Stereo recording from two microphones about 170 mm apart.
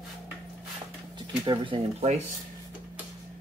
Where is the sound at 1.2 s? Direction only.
30° right (ahead or behind).